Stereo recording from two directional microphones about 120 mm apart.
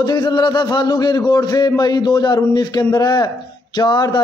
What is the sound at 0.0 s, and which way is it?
A man's voice, 35° left (ahead or behind).